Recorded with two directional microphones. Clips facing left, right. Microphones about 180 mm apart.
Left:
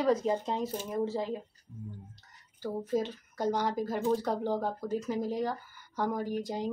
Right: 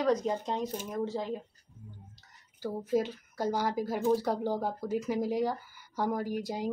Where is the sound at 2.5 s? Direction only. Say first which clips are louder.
Right 1 dB; 10° right (ahead or behind).